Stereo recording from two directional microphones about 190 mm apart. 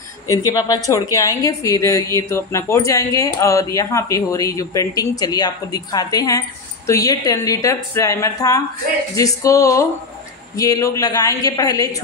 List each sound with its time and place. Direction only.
0.5 s a woman's voice: 20° left (ahead or behind)